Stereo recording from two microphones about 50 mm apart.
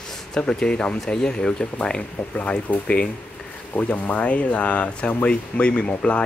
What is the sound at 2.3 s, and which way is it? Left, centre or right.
Speech, left.